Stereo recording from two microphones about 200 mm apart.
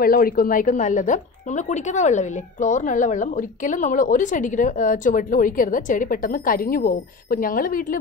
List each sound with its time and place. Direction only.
0.0 s a woman's voice: 45° left (ahead or behind)